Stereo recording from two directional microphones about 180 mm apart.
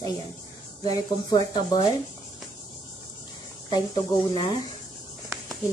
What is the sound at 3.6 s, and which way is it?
Speech, 25° left (ahead or behind).